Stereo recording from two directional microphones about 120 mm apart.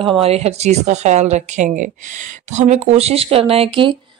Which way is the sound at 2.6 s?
70° right (ahead or behind).